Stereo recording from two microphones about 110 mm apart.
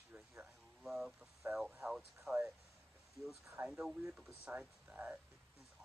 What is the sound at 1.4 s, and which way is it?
Speech, 15° right (ahead or behind).